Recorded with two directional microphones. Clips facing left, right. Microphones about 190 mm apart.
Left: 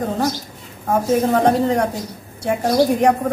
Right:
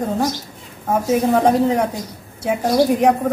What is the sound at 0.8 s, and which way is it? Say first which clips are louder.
A woman's voice: even; 5° right (ahead or behind).